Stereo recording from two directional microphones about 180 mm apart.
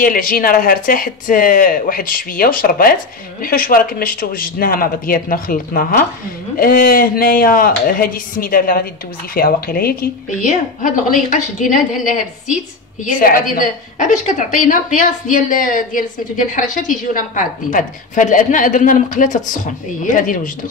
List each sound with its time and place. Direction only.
0.0 s a woman's voice: 50° left (ahead or behind)
10.4 s a woman's voice: 45° left (ahead or behind)